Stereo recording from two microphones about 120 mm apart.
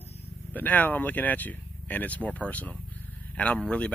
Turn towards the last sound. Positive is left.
turn(degrees=10)  # may be behind; listen again after turning